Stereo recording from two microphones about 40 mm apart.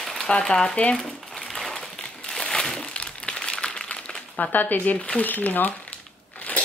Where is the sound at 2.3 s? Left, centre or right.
Centre.